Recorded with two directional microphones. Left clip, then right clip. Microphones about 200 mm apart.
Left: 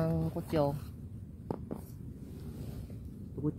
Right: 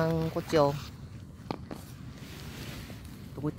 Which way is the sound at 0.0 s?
25° right (ahead or behind).